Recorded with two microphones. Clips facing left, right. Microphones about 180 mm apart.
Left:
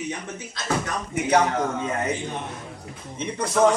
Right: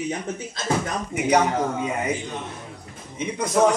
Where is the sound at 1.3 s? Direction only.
10° right (ahead or behind).